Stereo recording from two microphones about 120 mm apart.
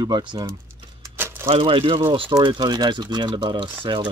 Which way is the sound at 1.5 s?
50° right (ahead or behind).